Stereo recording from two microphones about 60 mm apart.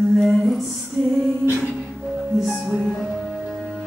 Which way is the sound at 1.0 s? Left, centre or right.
Right.